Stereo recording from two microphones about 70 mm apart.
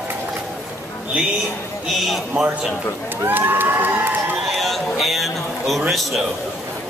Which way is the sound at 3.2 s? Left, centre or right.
Right.